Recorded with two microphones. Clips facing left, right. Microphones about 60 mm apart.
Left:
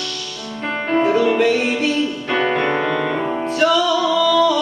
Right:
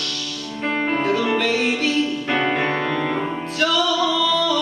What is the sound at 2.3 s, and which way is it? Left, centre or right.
Music, centre.